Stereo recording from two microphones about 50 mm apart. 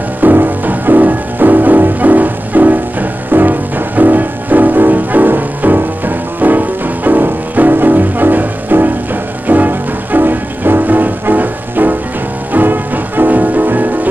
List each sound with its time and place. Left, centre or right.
0.2 s music: right